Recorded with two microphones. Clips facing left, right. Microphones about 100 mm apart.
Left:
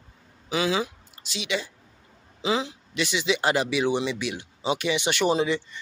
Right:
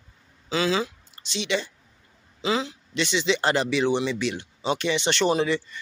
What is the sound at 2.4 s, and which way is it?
A man's voice, 20° left (ahead or behind).